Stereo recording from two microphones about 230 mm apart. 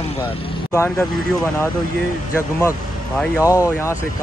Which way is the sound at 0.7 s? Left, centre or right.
Centre.